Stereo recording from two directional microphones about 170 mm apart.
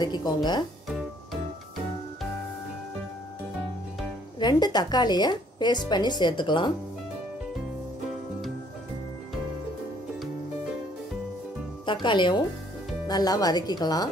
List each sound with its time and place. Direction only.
0.0 s a woman's voice: 25° left (ahead or behind)
4.4 s a woman's voice: 25° left (ahead or behind)
11.8 s a woman's voice: 25° left (ahead or behind)